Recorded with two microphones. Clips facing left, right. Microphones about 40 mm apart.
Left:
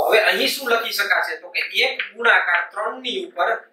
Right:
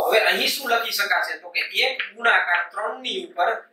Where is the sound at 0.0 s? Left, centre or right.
Centre.